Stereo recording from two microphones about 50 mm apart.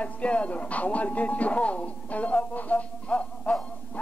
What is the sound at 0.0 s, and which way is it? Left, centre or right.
Speech, left.